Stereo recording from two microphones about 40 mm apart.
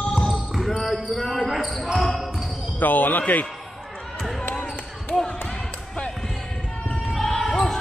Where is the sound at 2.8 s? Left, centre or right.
Left.